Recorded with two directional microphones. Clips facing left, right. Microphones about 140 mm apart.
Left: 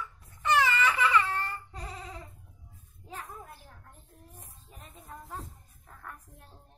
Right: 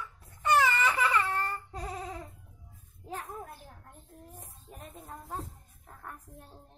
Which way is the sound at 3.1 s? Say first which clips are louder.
Right 4 dB; 45° right (ahead or behind).